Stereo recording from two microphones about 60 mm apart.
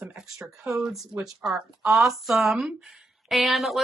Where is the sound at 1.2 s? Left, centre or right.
Centre.